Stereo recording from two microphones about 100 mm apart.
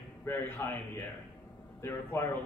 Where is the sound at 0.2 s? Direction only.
25° left (ahead or behind).